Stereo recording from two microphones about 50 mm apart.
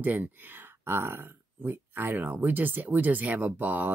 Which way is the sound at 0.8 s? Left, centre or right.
Right.